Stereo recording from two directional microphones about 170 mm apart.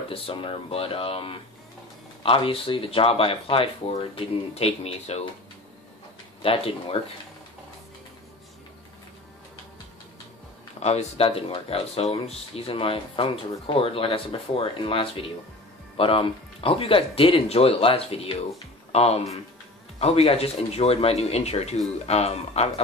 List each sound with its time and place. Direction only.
0.1 s speech: 30° left (ahead or behind)
6.4 s speech: 35° left (ahead or behind)
10.8 s speech: 40° left (ahead or behind)